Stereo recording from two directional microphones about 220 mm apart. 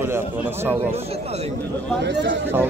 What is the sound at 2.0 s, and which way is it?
Speech, 50° right (ahead or behind).